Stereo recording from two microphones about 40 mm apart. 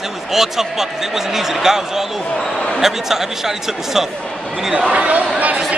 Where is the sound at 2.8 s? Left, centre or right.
Centre.